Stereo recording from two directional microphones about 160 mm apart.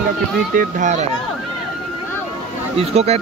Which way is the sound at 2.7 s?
40° right (ahead or behind).